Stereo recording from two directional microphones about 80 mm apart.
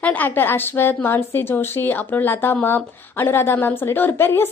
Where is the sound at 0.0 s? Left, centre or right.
Left.